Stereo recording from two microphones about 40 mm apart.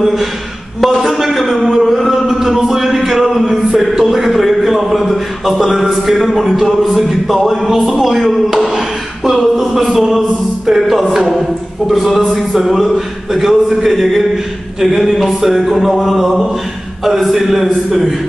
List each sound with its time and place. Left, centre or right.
0.0 s music: centre
0.7 s a man's voice: centre
1.1 s a sound: centre
5.6 s a man's voice: centre
15.4 s music: centre
15.7 s a man's voice: centre